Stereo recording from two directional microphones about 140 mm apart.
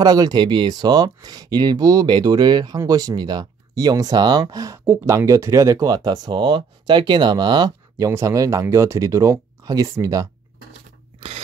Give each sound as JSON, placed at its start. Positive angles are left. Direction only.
{"t": 0.0, "sound": "speech", "side_deg": -30}
{"t": 11.1, "sound": "scissors", "side_deg": -45}